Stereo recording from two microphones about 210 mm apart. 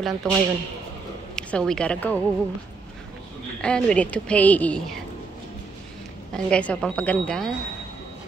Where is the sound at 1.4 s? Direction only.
5° left (ahead or behind).